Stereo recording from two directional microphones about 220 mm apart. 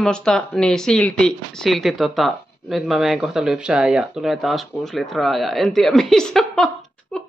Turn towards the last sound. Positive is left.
turn(degrees=5)  # may be behind; listen again after turning